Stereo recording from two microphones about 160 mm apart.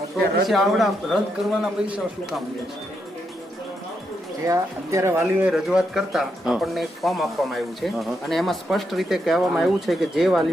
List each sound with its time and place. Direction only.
0.5 s speech: centre (ahead or behind)
4.5 s speech: 20° right (ahead or behind)
5.5 s speech: 5° right (ahead or behind)